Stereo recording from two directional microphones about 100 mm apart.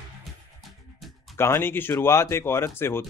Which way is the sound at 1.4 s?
30° left (ahead or behind).